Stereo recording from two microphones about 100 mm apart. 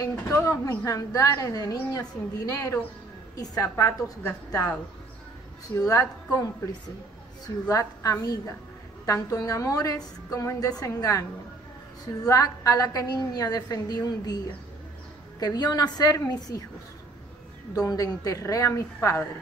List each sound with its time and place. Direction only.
0.0 s a woman's voice: 30° left (ahead or behind)
5.8 s a woman's voice: 35° left (ahead or behind)
7.4 s a woman's voice: 35° left (ahead or behind)
15.4 s a woman's voice: 40° left (ahead or behind)
17.7 s a woman's voice: 40° left (ahead or behind)